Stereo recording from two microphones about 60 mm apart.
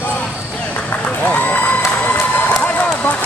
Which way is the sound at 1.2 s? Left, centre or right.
Left.